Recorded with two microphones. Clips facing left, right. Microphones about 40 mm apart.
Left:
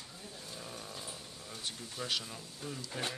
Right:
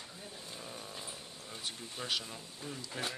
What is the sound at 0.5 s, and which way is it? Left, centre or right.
Roaring cats, centre.